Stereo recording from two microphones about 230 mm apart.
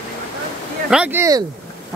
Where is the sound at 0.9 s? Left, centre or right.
Centre.